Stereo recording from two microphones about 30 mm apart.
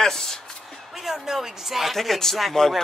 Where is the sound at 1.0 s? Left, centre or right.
Centre.